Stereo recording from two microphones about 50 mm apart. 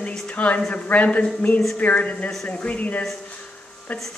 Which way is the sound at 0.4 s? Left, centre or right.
Left.